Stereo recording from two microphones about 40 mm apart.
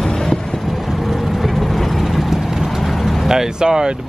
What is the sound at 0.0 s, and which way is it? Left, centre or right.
Vehicle, centre.